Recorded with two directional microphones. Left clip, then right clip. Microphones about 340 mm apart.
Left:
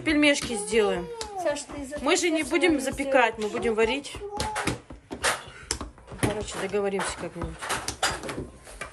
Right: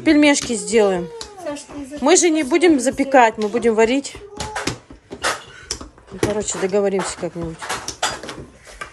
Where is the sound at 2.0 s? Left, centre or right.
Centre.